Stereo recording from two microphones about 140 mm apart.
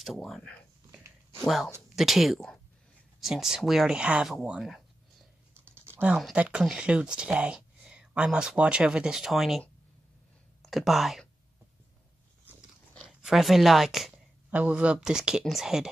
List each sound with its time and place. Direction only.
0.0 s speech: centre (ahead or behind)
5.7 s a sound: 15° right (ahead or behind)
6.1 s speech: 5° right (ahead or behind)
13.0 s speech: centre (ahead or behind)